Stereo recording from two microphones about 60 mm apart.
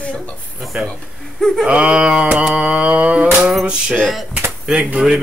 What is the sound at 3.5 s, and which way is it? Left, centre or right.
Music, centre.